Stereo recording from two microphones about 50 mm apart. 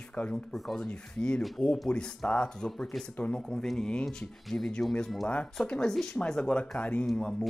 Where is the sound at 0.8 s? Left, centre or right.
Centre.